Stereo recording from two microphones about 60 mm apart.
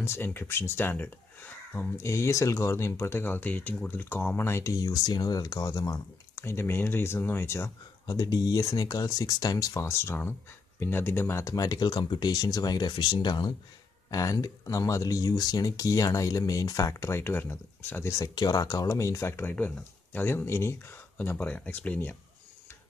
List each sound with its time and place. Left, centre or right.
0.0 s speech: left
2.0 s speech: left
4.5 s speech: left
4.7 s speech: left
6.3 s speech: left
8.1 s speech: left
9.8 s speech: left
11.5 s speech: left
14.1 s speech: left
17.2 s speech: left
18.0 s speech: left
18.9 s speech: left
19.5 s speech: left
20.4 s speech: left